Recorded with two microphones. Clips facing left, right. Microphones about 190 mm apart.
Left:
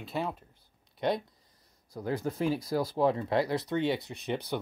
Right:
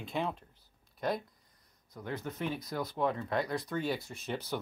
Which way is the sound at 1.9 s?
35° left (ahead or behind).